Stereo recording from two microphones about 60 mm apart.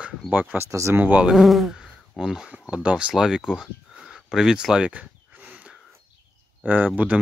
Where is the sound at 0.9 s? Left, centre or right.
Right.